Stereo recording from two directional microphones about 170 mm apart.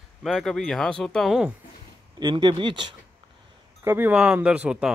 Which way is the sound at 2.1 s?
25° right (ahead or behind).